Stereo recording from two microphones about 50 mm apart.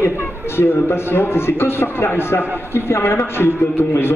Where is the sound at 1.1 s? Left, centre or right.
Left.